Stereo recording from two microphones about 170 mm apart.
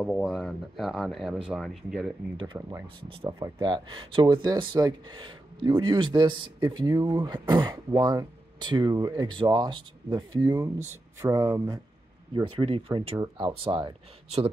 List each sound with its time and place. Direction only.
0.0 s speech: 5° left (ahead or behind)
2.4 s speech: 30° right (ahead or behind)